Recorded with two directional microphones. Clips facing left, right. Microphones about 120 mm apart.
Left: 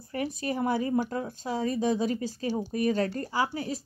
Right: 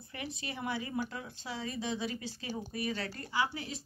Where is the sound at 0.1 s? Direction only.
40° left (ahead or behind).